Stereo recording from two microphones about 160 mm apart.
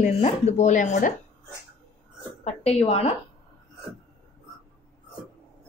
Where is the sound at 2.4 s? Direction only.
40° left (ahead or behind).